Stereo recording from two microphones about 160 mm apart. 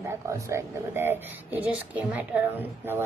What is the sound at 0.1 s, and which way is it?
A woman's voice, 15° right (ahead or behind).